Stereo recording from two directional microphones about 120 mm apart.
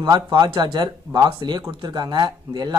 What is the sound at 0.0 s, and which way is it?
Speech, 35° right (ahead or behind).